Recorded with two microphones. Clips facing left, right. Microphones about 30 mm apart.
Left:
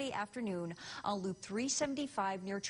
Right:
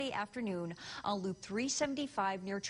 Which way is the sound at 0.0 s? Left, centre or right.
Centre.